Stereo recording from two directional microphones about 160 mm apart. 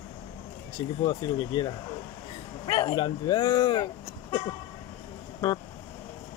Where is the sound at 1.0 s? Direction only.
25° left (ahead or behind).